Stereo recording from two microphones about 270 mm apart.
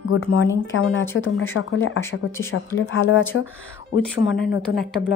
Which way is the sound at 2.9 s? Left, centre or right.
Left.